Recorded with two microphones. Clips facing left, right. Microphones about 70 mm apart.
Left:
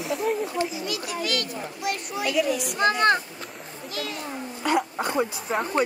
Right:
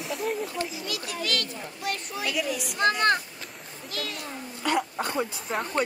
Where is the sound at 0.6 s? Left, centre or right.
Centre.